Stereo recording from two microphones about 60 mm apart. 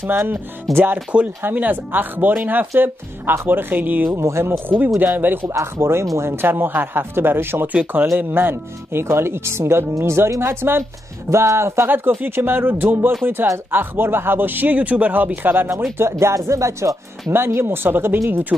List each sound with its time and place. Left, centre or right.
0.0 s a man's voice: right
0.7 s speech: centre
1.4 s a man's voice: right
4.1 s a man's voice: right
7.6 s speech: right
8.3 s speech: right
11.2 s a man's voice: right
16.0 s speech: right
17.6 s a man's voice: right